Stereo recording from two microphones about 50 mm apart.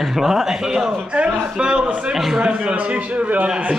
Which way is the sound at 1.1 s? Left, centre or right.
Right.